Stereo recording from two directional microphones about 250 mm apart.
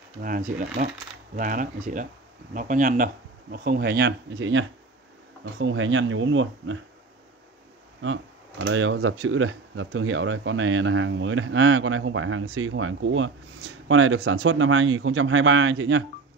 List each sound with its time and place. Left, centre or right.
0.2 s speech: right
8.0 s speech: right